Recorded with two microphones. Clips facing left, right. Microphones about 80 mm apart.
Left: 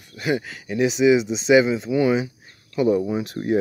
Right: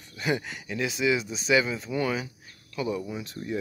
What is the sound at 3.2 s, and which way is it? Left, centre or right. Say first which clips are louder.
Speech: left 10 dB; left.